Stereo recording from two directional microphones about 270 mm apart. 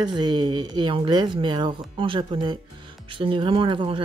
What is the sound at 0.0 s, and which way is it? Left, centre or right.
Speech, centre.